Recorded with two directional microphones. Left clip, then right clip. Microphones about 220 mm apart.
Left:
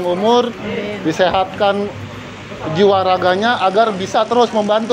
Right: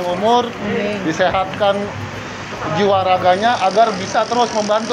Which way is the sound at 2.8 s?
55° left (ahead or behind).